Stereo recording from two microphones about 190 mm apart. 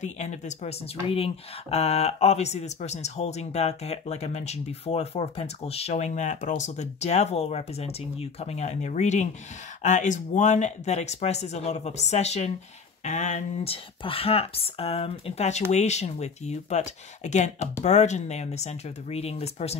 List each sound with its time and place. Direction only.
0.0 s speech: 35° left (ahead or behind)